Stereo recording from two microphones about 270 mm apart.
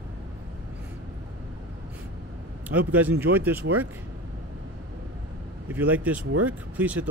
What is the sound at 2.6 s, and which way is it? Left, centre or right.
Speech, centre.